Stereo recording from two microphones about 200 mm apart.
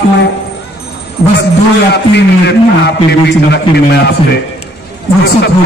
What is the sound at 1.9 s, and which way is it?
A man's voice, 55° left (ahead or behind).